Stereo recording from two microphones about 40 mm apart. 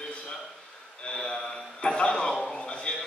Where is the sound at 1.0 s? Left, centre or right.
Left.